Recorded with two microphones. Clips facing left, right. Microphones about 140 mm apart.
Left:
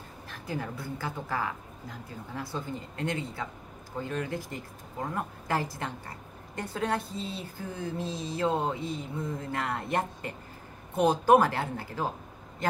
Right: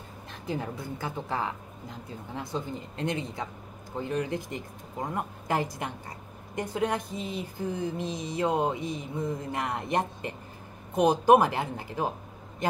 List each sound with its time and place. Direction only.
0.3 s a woman's voice: 20° right (ahead or behind)